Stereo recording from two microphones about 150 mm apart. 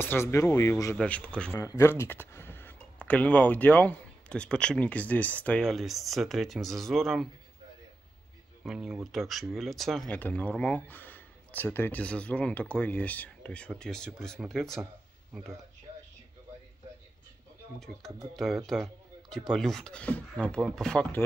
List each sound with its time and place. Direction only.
0.0 s speech: 15° left (ahead or behind)
0.9 s speech: 10° left (ahead or behind)
1.6 s speech: 20° left (ahead or behind); by 7.2 s centre (ahead or behind)
8.6 s speech: centre (ahead or behind)
17.7 s speech: centre (ahead or behind)
18.7 s a sound: centre (ahead or behind)
19.5 s speech: 5° left (ahead or behind)